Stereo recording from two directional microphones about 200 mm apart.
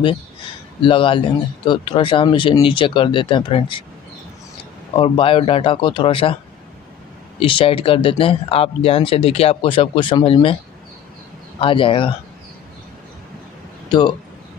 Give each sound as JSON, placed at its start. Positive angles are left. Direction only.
{"t": 0.8, "sound": "speech", "side_deg": 25}
{"t": 4.9, "sound": "speech", "side_deg": 25}
{"t": 7.3, "sound": "speech", "side_deg": 25}
{"t": 11.6, "sound": "speech", "side_deg": 25}
{"t": 13.8, "sound": "speech", "side_deg": 20}